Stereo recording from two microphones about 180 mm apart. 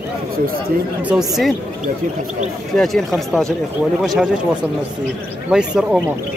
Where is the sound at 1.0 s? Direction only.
5° right (ahead or behind).